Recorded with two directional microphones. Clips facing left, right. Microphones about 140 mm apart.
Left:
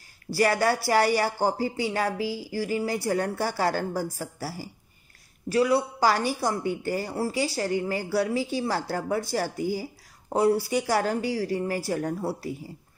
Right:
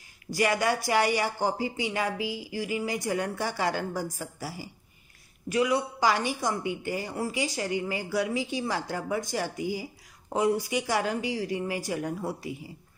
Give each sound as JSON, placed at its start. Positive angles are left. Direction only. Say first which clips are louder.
{"t": 0.3, "sound": "a woman's voice", "louder": "left 3 dB", "side_deg": 35}